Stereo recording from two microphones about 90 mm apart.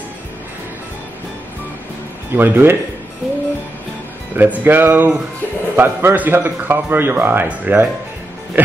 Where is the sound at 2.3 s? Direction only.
25° right (ahead or behind).